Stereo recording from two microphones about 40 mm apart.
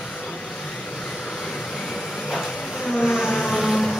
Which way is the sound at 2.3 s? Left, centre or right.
Centre.